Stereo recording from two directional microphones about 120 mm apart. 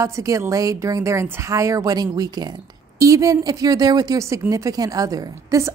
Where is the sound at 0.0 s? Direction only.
25° right (ahead or behind).